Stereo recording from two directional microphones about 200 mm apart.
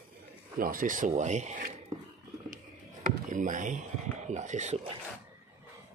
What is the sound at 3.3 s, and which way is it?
Speech, 40° right (ahead or behind).